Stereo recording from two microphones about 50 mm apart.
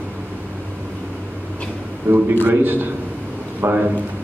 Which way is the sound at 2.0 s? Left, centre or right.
Right.